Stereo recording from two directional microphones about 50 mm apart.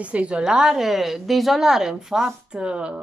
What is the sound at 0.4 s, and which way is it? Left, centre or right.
A woman's voice, centre.